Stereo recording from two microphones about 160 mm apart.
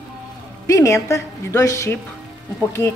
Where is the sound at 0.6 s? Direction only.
20° left (ahead or behind).